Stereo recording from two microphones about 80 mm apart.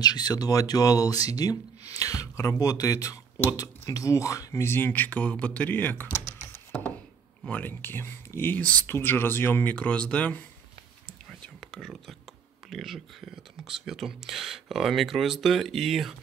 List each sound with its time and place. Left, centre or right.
0.0 s speech: left; by 10.4 s centre
11.1 s whispering: centre
12.6 s speech: centre